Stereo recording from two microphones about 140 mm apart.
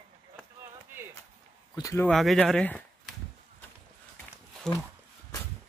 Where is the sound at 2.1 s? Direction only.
Centre (ahead or behind).